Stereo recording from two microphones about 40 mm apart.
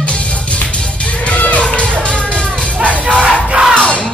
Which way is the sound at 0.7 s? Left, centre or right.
Left.